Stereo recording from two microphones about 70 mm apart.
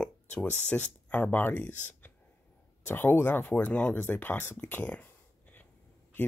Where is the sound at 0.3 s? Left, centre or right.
Centre.